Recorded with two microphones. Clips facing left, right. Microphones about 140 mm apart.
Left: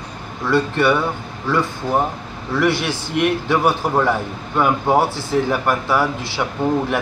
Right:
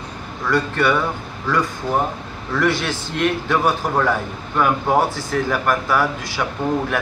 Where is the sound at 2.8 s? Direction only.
15° left (ahead or behind).